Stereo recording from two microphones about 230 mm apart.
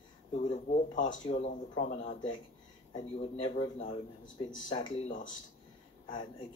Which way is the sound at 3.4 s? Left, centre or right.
Left.